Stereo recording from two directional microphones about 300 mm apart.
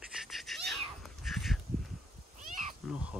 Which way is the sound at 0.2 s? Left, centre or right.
Centre.